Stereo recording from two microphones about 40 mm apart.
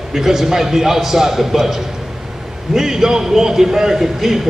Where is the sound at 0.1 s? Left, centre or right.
Centre.